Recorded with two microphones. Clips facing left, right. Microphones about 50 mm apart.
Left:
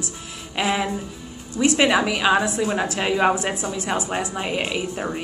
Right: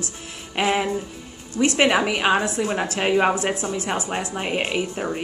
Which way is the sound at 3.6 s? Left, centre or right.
Right.